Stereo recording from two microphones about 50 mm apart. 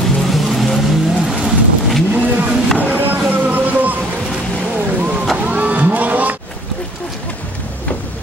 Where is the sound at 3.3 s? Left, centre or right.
Right.